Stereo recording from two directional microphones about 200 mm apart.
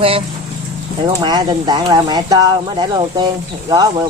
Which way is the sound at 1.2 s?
20° right (ahead or behind).